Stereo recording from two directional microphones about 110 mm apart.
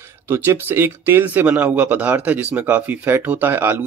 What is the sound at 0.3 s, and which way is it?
Speech, 20° right (ahead or behind).